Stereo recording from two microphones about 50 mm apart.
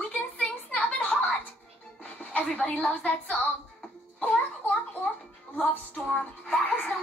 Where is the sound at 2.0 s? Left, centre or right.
Left.